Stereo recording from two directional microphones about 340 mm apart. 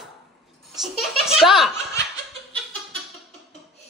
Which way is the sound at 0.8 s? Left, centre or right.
Centre.